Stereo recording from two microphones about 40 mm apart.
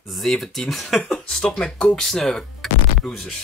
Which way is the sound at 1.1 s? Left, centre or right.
Left.